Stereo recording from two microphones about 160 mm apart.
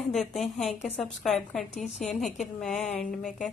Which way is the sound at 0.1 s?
Centre (ahead or behind).